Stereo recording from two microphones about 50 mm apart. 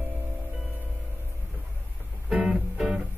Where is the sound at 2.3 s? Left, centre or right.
Right.